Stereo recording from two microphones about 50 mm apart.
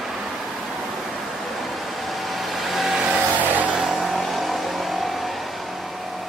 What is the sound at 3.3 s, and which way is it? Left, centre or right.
Vehicle, right.